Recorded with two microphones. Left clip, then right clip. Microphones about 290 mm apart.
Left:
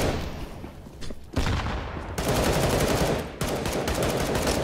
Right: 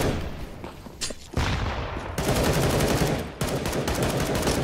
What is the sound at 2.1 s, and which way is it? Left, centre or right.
Gunshot, centre.